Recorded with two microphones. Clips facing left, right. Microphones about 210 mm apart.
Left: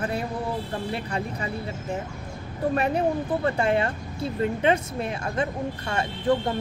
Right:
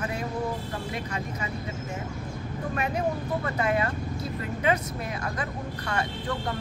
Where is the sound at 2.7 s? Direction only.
35° left (ahead or behind).